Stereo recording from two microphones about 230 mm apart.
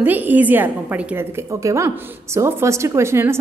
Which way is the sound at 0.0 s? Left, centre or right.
Centre.